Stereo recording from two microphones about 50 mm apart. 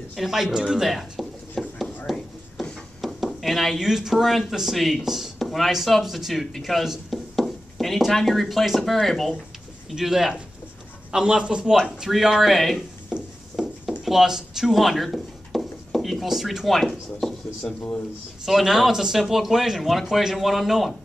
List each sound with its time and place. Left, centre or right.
0.1 s speech: centre
1.6 s a sound: centre
3.0 s speech: centre
9.8 s speech: centre
12.1 s speech: centre
13.6 s a sound: centre
14.0 s speech: centre
18.4 s speech: centre